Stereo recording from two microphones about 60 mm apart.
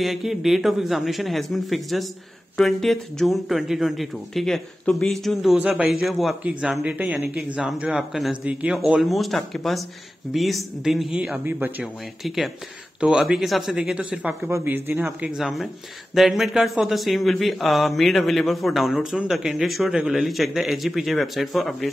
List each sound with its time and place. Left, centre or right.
0.0 s speech: centre
5.6 s speech: right
5.9 s speech: centre
6.8 s speech: right
9.1 s speech: centre
11.1 s speech: centre
11.8 s speech: centre
13.7 s speech: centre
14.6 s speech: right
15.3 s speech: centre